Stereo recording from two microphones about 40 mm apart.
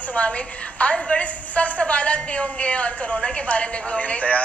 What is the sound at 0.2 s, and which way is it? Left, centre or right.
Speech, left.